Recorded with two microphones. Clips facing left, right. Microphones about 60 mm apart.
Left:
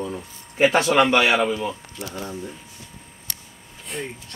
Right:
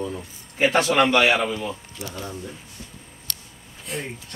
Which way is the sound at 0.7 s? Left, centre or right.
Left.